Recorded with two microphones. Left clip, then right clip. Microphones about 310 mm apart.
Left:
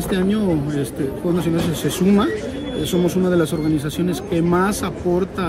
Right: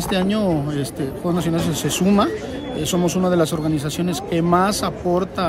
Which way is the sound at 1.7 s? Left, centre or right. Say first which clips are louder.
Right 1 dB; centre.